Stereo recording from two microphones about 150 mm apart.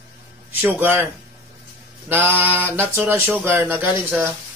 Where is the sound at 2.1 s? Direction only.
15° right (ahead or behind).